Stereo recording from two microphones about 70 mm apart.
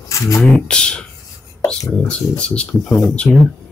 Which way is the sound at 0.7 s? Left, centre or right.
Centre.